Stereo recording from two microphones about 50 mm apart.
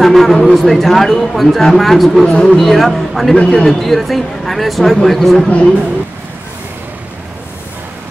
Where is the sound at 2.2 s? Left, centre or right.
Centre.